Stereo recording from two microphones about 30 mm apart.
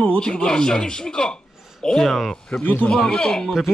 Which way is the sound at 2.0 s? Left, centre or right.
Centre.